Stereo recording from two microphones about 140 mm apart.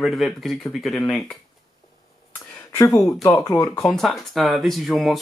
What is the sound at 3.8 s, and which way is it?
Speech, centre (ahead or behind).